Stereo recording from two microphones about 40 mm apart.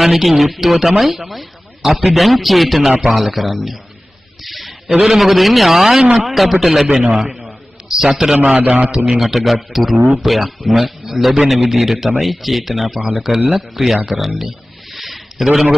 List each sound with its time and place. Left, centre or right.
0.0 s speech: centre
4.5 s a sound: centre
5.0 s speech: centre
6.9 s a man's voice: centre
7.2 s a man's voice: centre
9.2 s speech: centre
15.0 s a sound: centre